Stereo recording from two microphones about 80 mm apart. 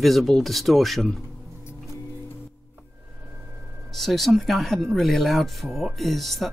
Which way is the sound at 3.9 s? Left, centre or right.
Centre.